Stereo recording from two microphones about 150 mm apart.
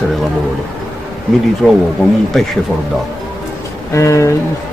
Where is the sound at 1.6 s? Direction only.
5° right (ahead or behind).